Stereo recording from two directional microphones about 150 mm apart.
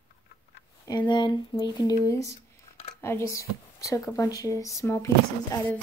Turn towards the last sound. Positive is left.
turn(degrees=15)  # may be behind; listen again after turning